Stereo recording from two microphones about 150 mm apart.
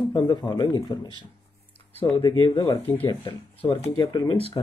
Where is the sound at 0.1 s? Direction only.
30° left (ahead or behind).